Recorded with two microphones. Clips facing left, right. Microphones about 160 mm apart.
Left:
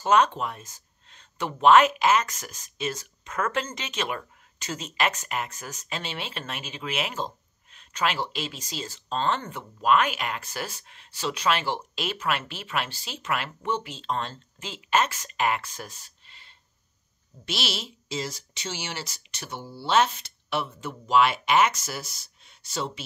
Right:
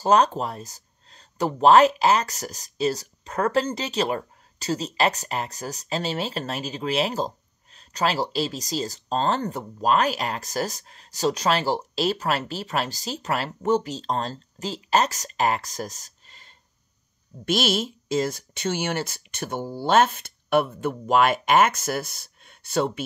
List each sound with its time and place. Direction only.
0.0 s speech: 35° right (ahead or behind); by 23.0 s 55° right (ahead or behind)